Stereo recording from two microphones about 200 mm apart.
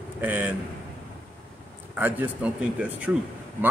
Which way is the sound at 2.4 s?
5° right (ahead or behind).